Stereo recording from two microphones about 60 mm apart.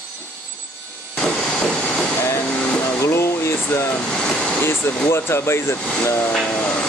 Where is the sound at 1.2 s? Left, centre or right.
Centre.